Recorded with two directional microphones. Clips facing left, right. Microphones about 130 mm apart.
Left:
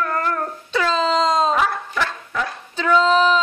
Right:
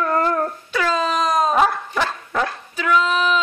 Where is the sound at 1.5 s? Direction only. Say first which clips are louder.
Right 3 dB; 35° right (ahead or behind).